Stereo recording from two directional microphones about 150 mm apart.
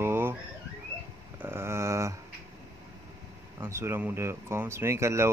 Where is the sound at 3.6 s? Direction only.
15° right (ahead or behind).